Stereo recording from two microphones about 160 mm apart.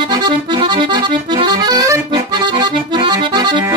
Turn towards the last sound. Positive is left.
turn(degrees=-30)  # may be behind; listen again after turning